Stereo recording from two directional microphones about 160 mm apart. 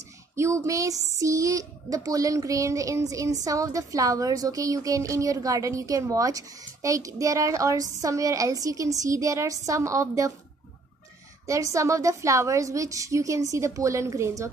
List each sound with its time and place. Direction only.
0.4 s speech: 20° right (ahead or behind)
11.4 s speech: 20° right (ahead or behind)